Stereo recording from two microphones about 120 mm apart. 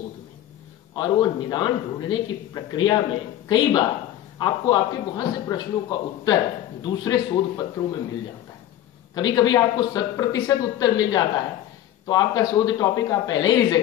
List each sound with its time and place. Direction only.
0.9 s a man's voice: 40° left (ahead or behind)
9.1 s a man's voice: 35° left (ahead or behind)